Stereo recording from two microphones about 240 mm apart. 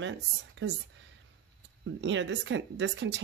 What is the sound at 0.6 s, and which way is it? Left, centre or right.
Speech, right.